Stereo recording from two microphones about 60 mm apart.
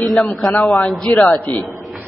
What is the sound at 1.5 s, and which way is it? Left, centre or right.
Speech, left.